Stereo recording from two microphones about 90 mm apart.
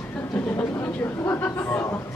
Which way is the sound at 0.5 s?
25° left (ahead or behind).